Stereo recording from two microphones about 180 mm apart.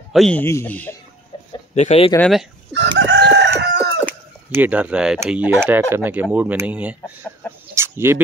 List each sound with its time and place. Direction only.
0.1 s a man's voice: 5° left (ahead or behind)
1.8 s speech: 35° left (ahead or behind)
2.1 s speech: 5° left (ahead or behind)
2.7 s chicken: 85° right
4.0 s a sound: 10° right (ahead or behind)
5.2 s speech: 5° right (ahead or behind)
7.7 s chicken: 15° right (ahead or behind)